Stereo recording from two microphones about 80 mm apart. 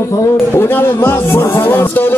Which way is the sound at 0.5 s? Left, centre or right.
Left.